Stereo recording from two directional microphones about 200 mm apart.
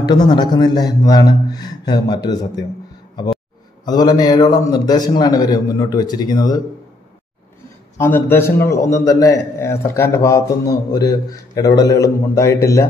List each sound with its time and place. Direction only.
0.1 s a man's voice: 20° left (ahead or behind)
3.8 s a man's voice: 20° left (ahead or behind)
8.0 s a man's voice: 10° left (ahead or behind)